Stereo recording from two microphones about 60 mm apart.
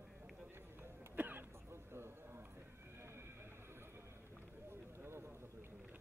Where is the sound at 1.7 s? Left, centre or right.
Right.